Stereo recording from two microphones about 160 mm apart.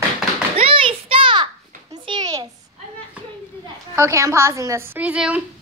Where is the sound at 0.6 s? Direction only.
35° right (ahead or behind).